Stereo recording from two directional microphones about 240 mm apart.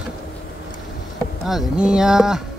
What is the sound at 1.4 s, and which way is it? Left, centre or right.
Speech, centre.